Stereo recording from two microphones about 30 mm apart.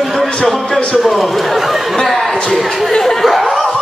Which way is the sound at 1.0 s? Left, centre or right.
Centre.